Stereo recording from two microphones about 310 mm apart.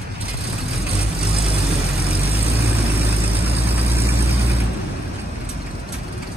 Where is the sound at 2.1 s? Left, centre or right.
Centre.